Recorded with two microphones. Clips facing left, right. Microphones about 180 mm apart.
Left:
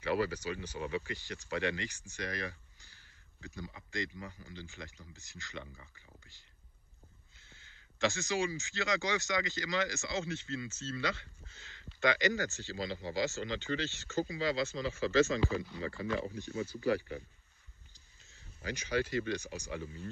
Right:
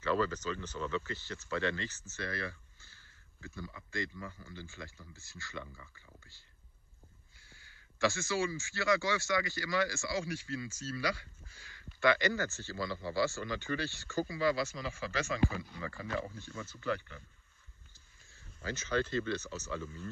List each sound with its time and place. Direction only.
0.0 s speech: 10° left (ahead or behind)
7.3 s a sound: 20° left (ahead or behind)
8.5 s speech: 20° left (ahead or behind)
17.9 s speech: 15° left (ahead or behind)